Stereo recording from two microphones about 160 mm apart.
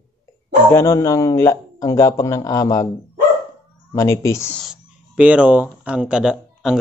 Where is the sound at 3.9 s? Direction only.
20° left (ahead or behind).